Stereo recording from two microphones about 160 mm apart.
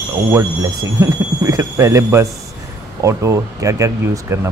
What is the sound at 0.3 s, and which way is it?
Speech, 20° right (ahead or behind).